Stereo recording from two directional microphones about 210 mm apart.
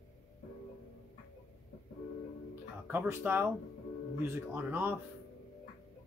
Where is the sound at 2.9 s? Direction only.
10° right (ahead or behind).